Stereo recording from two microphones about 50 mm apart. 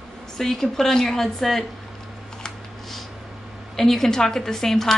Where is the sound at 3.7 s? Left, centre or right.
Centre.